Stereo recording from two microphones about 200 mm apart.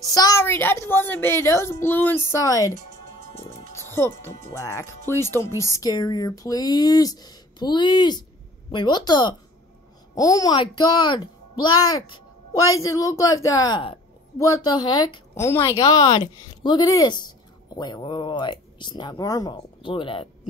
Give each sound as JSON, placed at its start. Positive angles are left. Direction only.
{"t": 0.0, "sound": "a woman's voice", "side_deg": 20}